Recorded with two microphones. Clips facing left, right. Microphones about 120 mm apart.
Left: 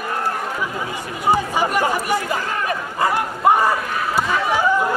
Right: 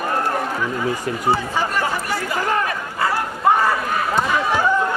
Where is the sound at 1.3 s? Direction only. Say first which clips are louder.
Left 3 dB; 15° left (ahead or behind).